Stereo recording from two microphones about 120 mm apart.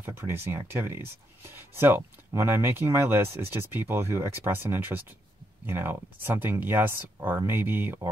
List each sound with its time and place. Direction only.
0.0 s speech: 20° right (ahead or behind)